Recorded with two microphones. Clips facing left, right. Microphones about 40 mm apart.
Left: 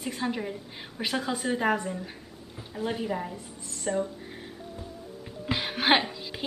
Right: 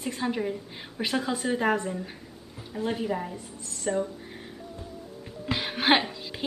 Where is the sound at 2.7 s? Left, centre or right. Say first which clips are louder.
Right 1 dB; centre.